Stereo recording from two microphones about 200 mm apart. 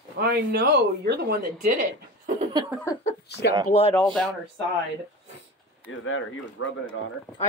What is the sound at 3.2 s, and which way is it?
Speech, 55° left (ahead or behind).